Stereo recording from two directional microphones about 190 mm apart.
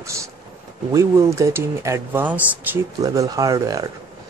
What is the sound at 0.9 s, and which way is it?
Speech, 15° right (ahead or behind).